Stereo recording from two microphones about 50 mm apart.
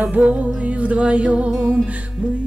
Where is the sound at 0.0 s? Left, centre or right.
Right.